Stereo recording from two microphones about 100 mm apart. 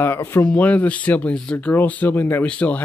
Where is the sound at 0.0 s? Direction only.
25° left (ahead or behind).